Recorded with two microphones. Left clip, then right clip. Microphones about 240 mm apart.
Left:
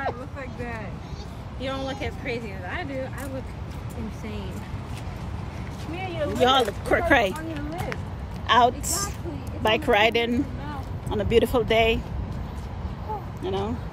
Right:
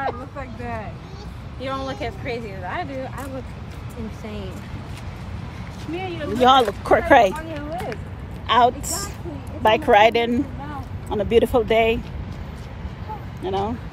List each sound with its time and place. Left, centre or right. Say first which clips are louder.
0.4 s vehicle: right 3 dB; centre
1.6 s speech: right 3 dB; centre
5.9 s speech: right 2 dB; left
6.4 s speech: right 6 dB; centre
7.1 s speech: right 7 dB; centre
8.5 s a woman's voice: right 2 dB; centre
13.4 s speech: right 6 dB; centre